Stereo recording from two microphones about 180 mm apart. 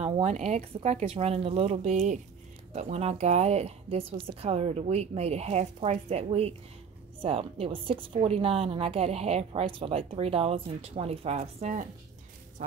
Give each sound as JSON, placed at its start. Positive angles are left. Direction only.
{"t": 0.0, "sound": "a woman's voice", "side_deg": -35}